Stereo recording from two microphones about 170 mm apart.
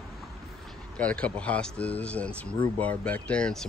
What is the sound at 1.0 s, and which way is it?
Speech, 10° left (ahead or behind).